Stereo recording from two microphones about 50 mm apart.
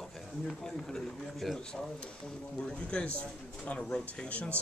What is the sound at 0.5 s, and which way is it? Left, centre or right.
Speech, centre.